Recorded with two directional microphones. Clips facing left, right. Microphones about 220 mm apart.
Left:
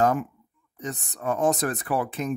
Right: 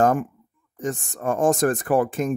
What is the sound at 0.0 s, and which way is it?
Speech, 50° right (ahead or behind).